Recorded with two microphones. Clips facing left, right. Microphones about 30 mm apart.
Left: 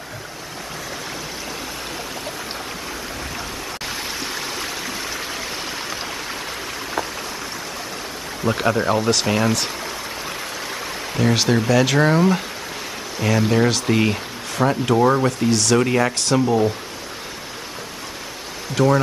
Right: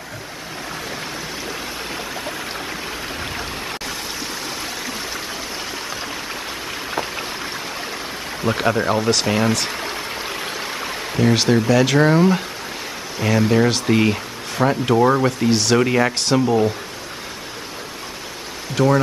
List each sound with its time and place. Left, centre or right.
4.6 s stream: centre
8.5 s speech: centre
11.1 s speech: centre
15.5 s speech: centre
15.8 s speech: centre
18.8 s speech: centre